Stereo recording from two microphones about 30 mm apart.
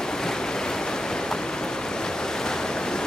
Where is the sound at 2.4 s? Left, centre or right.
Left.